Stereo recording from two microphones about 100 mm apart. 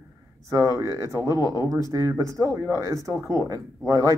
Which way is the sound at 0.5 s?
30° right (ahead or behind).